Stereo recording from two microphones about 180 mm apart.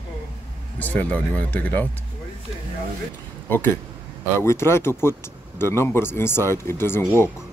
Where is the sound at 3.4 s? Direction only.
10° left (ahead or behind).